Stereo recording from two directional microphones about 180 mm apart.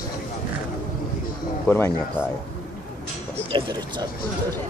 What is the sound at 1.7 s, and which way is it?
Speech, 15° left (ahead or behind).